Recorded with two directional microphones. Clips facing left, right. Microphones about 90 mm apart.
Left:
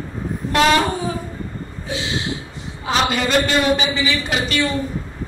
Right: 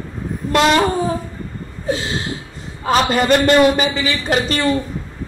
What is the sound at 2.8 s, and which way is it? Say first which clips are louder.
A man's voice: right 4 dB; 45° right (ahead or behind).